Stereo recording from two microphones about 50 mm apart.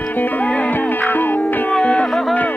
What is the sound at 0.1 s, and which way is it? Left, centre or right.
Music, left.